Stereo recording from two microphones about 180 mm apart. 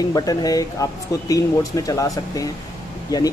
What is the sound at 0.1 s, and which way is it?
Speech, 20° left (ahead or behind).